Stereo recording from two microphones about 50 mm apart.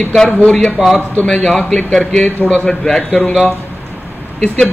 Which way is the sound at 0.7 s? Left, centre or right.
Centre.